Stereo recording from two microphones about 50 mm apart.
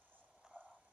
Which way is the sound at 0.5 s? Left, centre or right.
Right.